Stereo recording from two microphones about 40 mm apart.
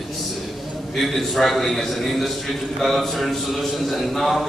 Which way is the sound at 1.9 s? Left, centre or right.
Centre.